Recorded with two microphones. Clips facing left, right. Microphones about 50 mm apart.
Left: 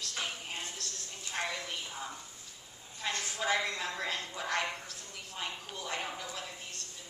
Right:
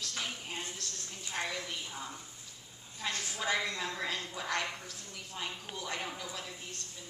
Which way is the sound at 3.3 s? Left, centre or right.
Centre.